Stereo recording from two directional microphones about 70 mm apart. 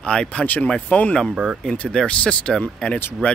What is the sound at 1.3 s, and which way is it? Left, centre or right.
Speech, centre.